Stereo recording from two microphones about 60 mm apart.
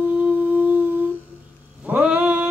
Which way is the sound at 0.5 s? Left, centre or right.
Right.